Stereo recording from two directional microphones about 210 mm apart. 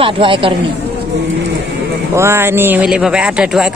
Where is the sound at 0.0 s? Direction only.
25° right (ahead or behind).